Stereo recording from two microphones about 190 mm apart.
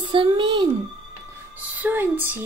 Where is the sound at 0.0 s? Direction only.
25° right (ahead or behind).